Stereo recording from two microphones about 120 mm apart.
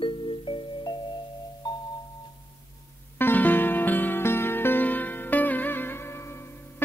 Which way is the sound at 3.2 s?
15° left (ahead or behind).